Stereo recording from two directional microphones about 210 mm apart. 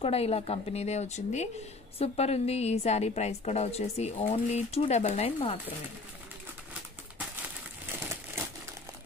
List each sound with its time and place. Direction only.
0.0 s a woman's voice: 30° left (ahead or behind)
7.9 s crumpling: 10° right (ahead or behind)